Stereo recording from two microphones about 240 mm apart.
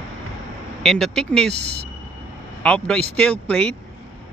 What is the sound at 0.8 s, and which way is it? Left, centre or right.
Speech, centre.